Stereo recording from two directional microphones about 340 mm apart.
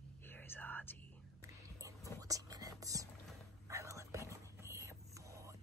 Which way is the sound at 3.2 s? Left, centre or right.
Centre.